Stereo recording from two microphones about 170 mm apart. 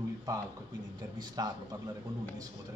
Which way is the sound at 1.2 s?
25° right (ahead or behind).